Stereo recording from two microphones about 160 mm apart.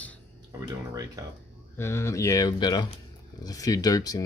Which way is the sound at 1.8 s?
15° left (ahead or behind).